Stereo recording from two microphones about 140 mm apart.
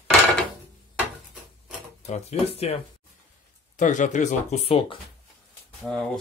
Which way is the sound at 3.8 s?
60° left (ahead or behind).